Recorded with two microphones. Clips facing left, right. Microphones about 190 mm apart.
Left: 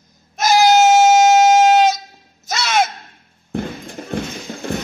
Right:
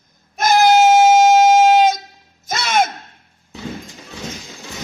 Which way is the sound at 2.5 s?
50° right (ahead or behind).